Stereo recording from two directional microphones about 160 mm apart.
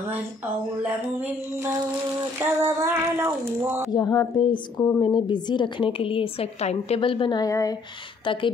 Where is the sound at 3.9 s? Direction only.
20° left (ahead or behind).